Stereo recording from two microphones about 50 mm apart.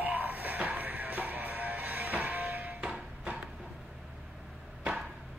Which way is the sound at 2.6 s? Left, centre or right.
Right.